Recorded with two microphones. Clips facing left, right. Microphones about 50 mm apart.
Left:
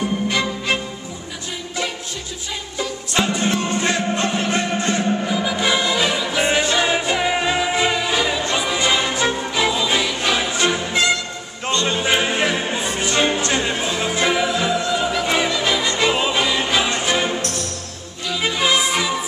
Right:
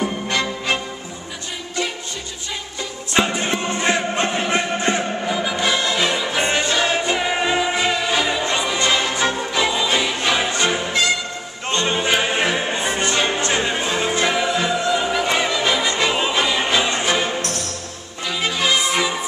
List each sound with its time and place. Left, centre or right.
0.3 s music: centre
3.2 s music: centre
5.3 s choir: centre
5.6 s music: centre
10.9 s music: centre
11.7 s music: centre
12.0 s music: centre
18.4 s music: centre